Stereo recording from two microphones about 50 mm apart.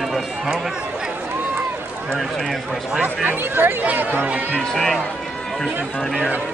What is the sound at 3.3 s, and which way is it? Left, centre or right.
Speech, right.